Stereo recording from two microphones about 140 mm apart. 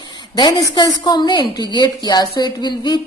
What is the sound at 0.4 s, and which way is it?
A woman's voice, 30° left (ahead or behind).